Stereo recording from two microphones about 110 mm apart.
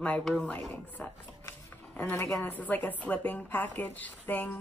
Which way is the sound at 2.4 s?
15° left (ahead or behind).